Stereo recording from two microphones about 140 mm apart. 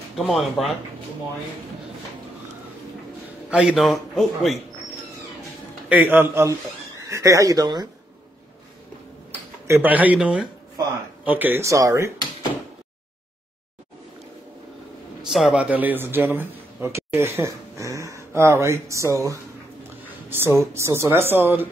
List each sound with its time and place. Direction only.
0.1 s a man's voice: centre (ahead or behind)
3.4 s a man's voice: 5° right (ahead or behind)
5.9 s a woman's voice: 10° right (ahead or behind); by 7.9 s 30° right (ahead or behind)
9.7 s a woman's voice: 15° right (ahead or behind)
15.2 s a woman's voice: centre (ahead or behind)